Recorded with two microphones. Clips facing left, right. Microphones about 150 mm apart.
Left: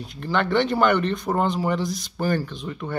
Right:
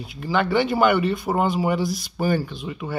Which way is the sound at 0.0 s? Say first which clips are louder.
Right 1 dB; 5° right (ahead or behind).